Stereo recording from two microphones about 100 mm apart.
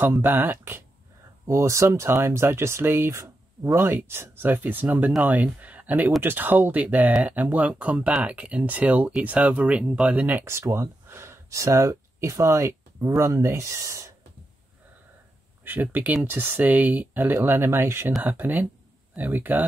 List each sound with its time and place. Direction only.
0.0 s speech: 20° right (ahead or behind)
15.6 s speech: 20° right (ahead or behind)